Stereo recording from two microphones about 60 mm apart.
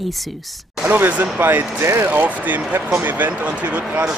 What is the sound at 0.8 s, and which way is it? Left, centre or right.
Speech, right.